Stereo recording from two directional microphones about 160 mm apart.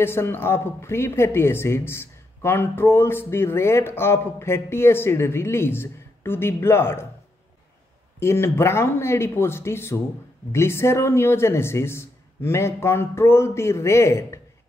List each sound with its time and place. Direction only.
0.0 s speech: 15° left (ahead or behind)
8.2 s speech: 15° left (ahead or behind)